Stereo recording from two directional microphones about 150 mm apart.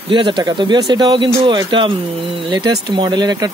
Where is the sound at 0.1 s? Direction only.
30° right (ahead or behind).